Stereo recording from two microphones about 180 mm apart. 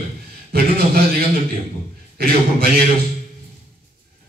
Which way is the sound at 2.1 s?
55° right (ahead or behind).